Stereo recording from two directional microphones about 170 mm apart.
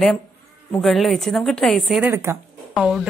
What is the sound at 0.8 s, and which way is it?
Speech, centre (ahead or behind).